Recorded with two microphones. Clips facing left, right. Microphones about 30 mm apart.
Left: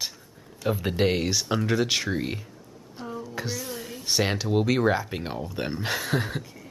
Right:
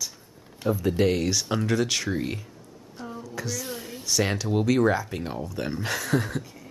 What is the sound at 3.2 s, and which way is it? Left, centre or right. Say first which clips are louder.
Speech: right 1 dB; left.